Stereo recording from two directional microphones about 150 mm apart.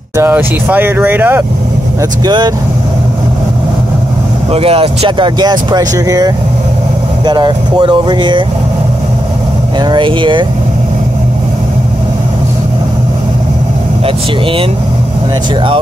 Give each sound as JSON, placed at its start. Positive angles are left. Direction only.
{"t": 0.2, "sound": "speech", "side_deg": -15}
{"t": 2.2, "sound": "speech", "side_deg": -30}
{"t": 4.5, "sound": "speech", "side_deg": -40}
{"t": 9.8, "sound": "speech", "side_deg": -30}